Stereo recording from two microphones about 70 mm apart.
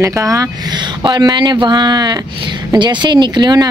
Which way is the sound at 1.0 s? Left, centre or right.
Right.